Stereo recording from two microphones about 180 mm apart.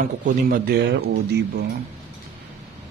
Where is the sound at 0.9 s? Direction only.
65° right (ahead or behind).